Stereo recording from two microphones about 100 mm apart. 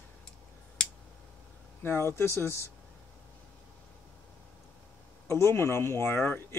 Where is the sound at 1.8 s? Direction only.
25° left (ahead or behind).